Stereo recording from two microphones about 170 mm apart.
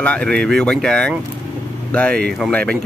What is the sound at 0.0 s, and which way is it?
Speech, 5° left (ahead or behind).